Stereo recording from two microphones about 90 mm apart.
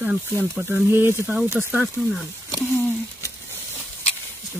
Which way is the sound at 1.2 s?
15° right (ahead or behind).